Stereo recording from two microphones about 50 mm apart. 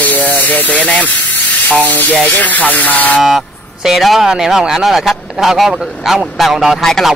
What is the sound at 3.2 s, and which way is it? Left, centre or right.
Speech, centre.